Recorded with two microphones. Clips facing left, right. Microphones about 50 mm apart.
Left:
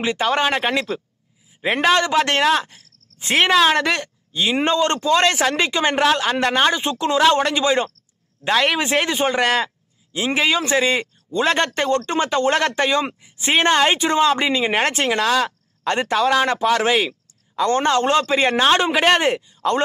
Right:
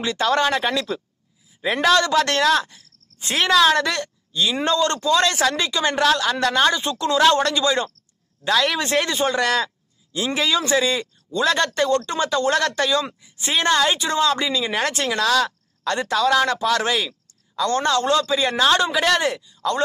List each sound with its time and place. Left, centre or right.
0.0 s a woman's voice: left